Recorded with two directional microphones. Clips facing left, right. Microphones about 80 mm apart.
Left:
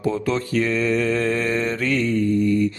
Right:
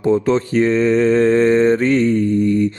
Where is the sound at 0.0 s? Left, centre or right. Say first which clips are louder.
Right 7 dB; right.